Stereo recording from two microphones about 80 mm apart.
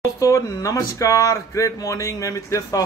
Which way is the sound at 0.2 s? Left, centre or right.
Left.